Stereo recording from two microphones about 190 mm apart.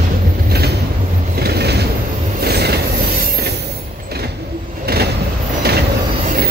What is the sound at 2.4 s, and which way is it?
Train, 55° right (ahead or behind).